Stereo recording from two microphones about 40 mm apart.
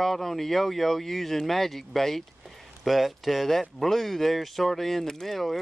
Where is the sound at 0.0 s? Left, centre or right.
Centre.